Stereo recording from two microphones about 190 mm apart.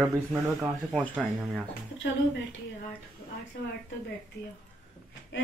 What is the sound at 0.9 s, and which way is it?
Speech, 5° right (ahead or behind).